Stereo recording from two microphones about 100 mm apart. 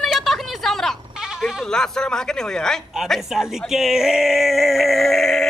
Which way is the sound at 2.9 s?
Centre (ahead or behind).